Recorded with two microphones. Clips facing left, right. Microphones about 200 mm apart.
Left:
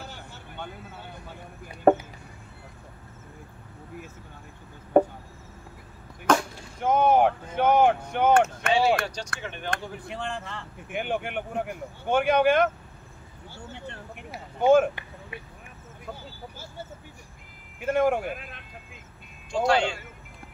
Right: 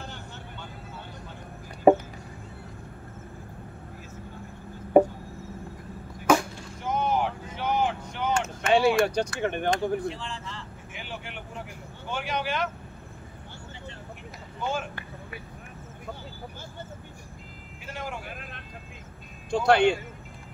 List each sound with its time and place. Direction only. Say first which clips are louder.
1.9 s a sound: right 1 dB; 10° right (ahead or behind)
4.9 s insect: right 2 dB; 10° right (ahead or behind)
6.3 s chop: right 1 dB; 10° right (ahead or behind)
6.8 s a sound: left 7 dB; 55° left (ahead or behind)
9.0 s speech: right 9 dB; 55° right (ahead or behind)
10.0 s speech: even; 60° left (ahead or behind)
14.6 s speech: left 13 dB; 55° left (ahead or behind)
17.8 s speech: left 14 dB; 55° left (ahead or behind)
18.3 s speech: left 4 dB; centre (ahead or behind)
19.5 s speech: right 3 dB; 60° right (ahead or behind)